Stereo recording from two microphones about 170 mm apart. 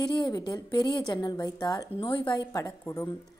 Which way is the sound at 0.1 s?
25° left (ahead or behind).